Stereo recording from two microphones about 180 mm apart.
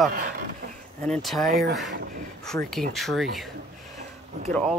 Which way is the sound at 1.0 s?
5° left (ahead or behind).